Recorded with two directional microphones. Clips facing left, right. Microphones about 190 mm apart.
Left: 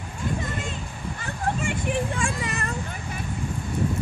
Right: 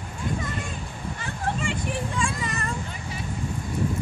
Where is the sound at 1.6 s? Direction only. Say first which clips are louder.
Left 2 dB; 55° left (ahead or behind).